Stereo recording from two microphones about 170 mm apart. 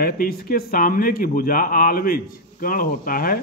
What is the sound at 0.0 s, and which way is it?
Speech, 65° left (ahead or behind).